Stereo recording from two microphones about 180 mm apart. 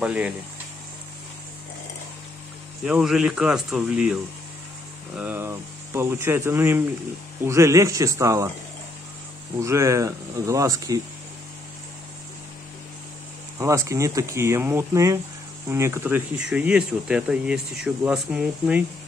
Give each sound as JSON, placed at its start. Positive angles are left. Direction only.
{"t": 0.0, "sound": "speech", "side_deg": -5}
{"t": 2.8, "sound": "speech", "side_deg": 0}
{"t": 9.6, "sound": "speech", "side_deg": -15}
{"t": 13.6, "sound": "speech", "side_deg": -15}